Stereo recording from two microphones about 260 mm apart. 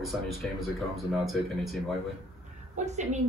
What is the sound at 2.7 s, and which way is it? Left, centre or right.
Speech, right.